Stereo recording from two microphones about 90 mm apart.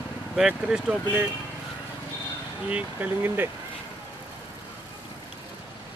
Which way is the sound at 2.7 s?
15° right (ahead or behind).